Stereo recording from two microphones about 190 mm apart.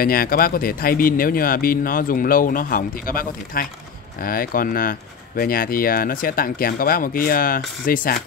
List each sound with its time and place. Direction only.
0.0 s speech: 50° left (ahead or behind)